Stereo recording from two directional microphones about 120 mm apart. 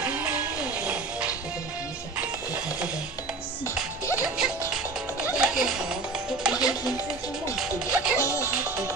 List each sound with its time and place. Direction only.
0.0 s music: 10° right (ahead or behind)
8.2 s music: 25° left (ahead or behind)